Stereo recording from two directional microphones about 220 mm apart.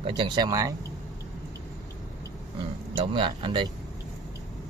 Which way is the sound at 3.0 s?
20° right (ahead or behind).